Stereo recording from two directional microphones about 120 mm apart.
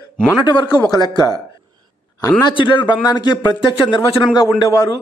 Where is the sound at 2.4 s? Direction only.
40° left (ahead or behind).